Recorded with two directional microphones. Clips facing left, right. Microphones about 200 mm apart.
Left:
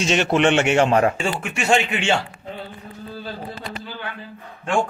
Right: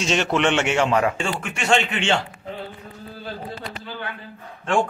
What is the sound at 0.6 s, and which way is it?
Speech, 40° left (ahead or behind).